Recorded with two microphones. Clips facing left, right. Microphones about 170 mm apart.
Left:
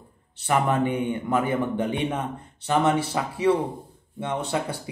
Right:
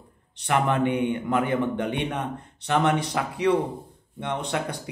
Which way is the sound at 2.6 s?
10° left (ahead or behind).